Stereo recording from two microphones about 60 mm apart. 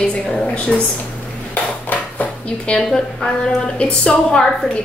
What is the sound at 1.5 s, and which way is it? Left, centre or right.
Dishes, left.